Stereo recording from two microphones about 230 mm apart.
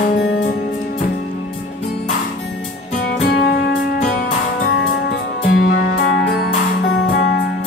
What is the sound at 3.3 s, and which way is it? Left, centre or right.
Music, left.